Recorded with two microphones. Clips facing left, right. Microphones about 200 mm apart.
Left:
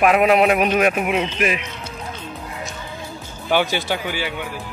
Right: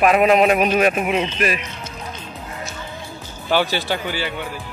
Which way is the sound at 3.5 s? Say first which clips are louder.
Even; 15° left (ahead or behind).